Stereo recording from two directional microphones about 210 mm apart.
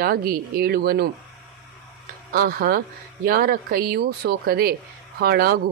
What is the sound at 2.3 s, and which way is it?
A woman's voice, 45° right (ahead or behind).